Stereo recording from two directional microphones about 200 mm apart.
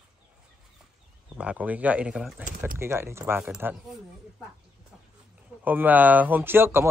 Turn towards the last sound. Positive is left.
turn(degrees=-10)  # may be behind; listen again after turning